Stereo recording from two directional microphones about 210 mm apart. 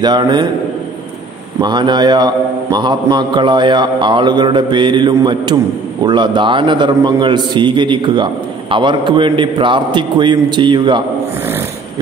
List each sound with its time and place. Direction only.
0.0 s a man's voice: 20° right (ahead or behind)
1.6 s a man's voice: 20° right (ahead or behind)